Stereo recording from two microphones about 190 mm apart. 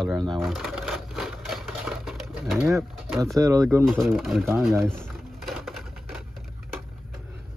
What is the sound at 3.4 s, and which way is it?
Speech, 15° right (ahead or behind).